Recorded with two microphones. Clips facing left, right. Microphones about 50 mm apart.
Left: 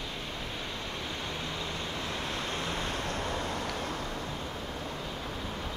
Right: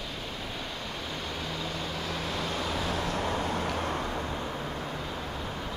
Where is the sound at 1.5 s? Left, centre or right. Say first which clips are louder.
Right 2 dB; centre; by 3.6 s left.